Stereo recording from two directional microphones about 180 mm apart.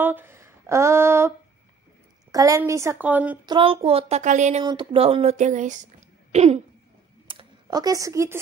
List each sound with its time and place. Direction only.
0.0 s speech: 10° right (ahead or behind)
2.3 s a woman's voice: 20° right (ahead or behind)
3.4 s speech: 30° right (ahead or behind)
4.6 s speech: 30° right (ahead or behind)
7.2 s a sound: 25° right (ahead or behind)